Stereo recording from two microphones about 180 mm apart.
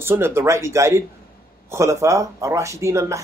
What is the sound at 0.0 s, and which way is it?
Speech, 15° right (ahead or behind).